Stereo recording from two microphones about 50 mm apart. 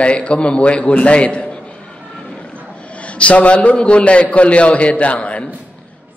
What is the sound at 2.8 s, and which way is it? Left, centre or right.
A man's voice, left.